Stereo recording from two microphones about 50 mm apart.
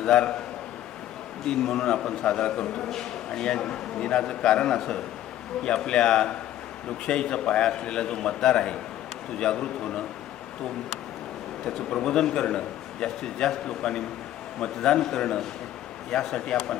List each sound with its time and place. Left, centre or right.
0.0 s a man's voice: centre
1.4 s a man's voice: centre
11.6 s a man's voice: centre